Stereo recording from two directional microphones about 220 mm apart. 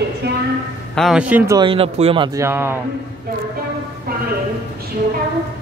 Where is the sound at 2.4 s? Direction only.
10° right (ahead or behind).